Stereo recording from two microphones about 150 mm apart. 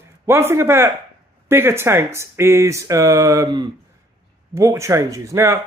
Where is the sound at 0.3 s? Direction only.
15° right (ahead or behind).